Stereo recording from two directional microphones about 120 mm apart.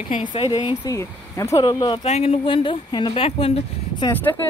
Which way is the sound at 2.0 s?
60° left (ahead or behind).